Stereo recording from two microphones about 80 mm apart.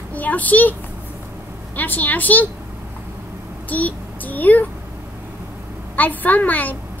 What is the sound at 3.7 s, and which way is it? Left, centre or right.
Child singing, centre.